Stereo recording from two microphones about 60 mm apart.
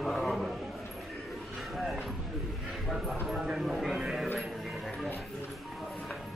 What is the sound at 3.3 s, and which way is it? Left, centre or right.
Speech, centre.